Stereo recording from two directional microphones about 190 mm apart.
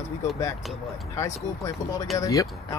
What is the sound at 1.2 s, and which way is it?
Speech, 15° left (ahead or behind).